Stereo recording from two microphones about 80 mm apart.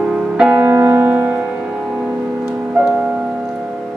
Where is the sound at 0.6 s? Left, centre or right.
Right.